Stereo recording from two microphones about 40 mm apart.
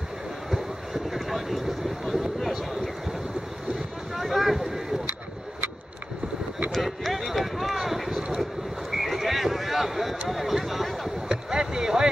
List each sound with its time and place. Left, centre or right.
0.5 s vehicle: centre
2.0 s a sound: centre
4.1 s boat: centre
6.7 s vehicle: centre
8.9 s horse: centre
10.2 s a sound: centre
11.2 s boat: centre